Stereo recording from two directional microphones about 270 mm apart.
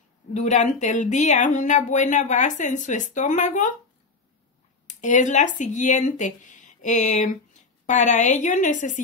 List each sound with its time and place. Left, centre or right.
0.3 s speech: left
4.8 s speech: left